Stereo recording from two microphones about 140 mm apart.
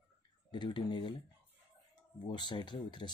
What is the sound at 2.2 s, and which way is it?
Speech, 35° left (ahead or behind).